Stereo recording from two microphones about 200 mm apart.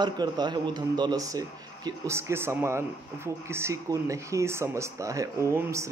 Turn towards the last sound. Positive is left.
turn(degrees=-15)  # may be behind; listen again after turning